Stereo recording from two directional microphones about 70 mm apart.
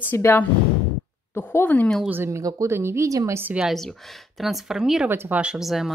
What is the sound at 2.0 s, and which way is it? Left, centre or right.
Speech, right.